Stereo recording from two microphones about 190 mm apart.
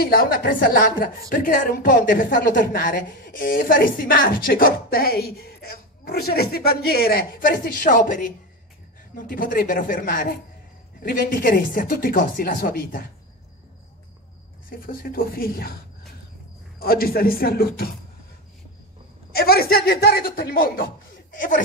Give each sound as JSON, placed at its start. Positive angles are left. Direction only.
{"t": 0.0, "sound": "speech", "side_deg": 50}
{"t": 14.7, "sound": "speech", "side_deg": 50}
{"t": 16.8, "sound": "speech", "side_deg": 50}
{"t": 19.3, "sound": "speech", "side_deg": 55}